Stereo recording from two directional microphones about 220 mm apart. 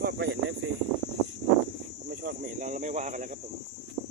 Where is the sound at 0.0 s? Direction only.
50° right (ahead or behind).